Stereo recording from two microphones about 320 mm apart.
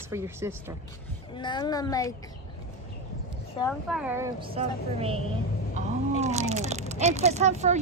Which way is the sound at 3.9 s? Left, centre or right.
Centre.